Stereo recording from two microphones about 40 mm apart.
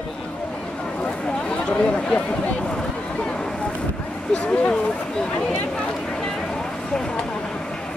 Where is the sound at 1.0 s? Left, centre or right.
Left.